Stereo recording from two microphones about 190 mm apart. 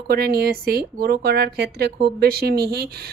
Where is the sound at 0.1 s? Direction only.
55° right (ahead or behind).